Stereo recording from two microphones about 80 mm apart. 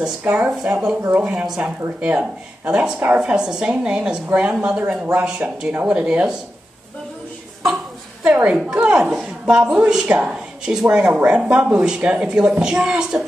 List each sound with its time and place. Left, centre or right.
0.2 s speech: centre
0.5 s speech: centre
8.2 s a woman's voice: centre